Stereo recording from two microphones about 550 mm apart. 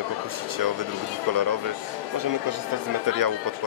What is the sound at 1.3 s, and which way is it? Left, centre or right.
Speech, right.